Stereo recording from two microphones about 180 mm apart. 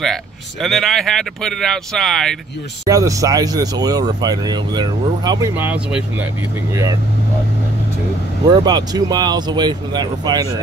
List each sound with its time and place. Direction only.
0.0 s speech: centre (ahead or behind)
2.9 s speech: 20° right (ahead or behind)
5.5 s speech: 10° right (ahead or behind)
8.5 s speech: 20° right (ahead or behind)